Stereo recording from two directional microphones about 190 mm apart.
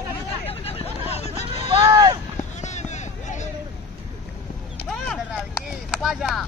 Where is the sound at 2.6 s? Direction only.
40° left (ahead or behind).